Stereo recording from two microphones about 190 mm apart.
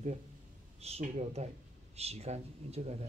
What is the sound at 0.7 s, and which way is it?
Speech, 35° right (ahead or behind).